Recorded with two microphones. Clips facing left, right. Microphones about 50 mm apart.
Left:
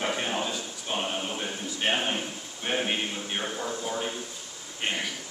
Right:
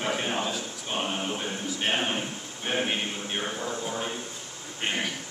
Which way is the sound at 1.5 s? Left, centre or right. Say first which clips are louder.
Left 2 dB; centre.